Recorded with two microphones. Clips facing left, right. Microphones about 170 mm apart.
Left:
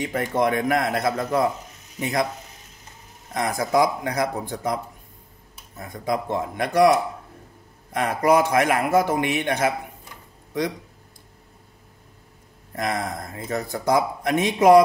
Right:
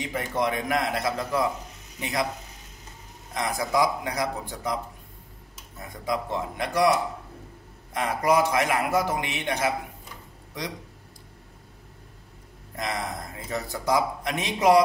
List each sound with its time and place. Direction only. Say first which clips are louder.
0.0 s a man's voice: left 5 dB; 50° left (ahead or behind)
3.3 s a man's voice: left 4 dB; 50° left (ahead or behind)
6.0 s a man's voice: left 4 dB; 50° left (ahead or behind)
7.9 s a man's voice: left 4 dB; 55° left (ahead or behind)
12.7 s a man's voice: left 4 dB; 50° left (ahead or behind)